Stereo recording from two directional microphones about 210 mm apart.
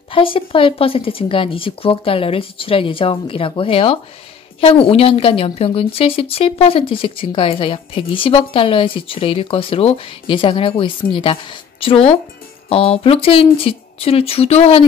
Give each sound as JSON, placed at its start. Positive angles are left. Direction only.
{"t": 0.1, "sound": "a woman's voice", "side_deg": 25}